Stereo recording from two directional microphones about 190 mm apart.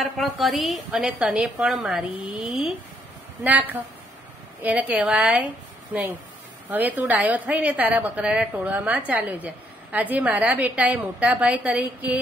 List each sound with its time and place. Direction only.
0.0 s a woman's voice: centre (ahead or behind)
6.7 s a woman's voice: 10° right (ahead or behind)